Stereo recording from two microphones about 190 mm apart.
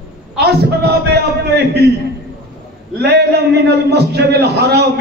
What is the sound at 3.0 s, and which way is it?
A man's voice, 60° right (ahead or behind).